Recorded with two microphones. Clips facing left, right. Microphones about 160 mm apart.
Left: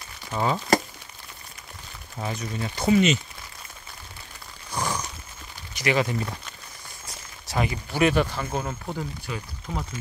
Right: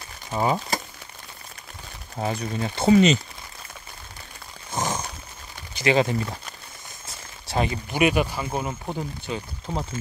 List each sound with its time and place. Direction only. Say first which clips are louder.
0.3 s speech: right 2 dB; 15° right (ahead or behind)
2.1 s speech: right 4 dB; 35° right (ahead or behind)
4.7 s a sound: right 1 dB; 20° right (ahead or behind)
5.8 s speech: right 3 dB; 30° right (ahead or behind)
7.1 s a sound: right 3 dB; 25° right (ahead or behind)
7.9 s speech: even; 15° right (ahead or behind)